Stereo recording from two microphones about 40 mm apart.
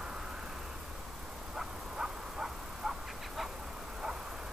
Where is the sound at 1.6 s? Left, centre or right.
Centre.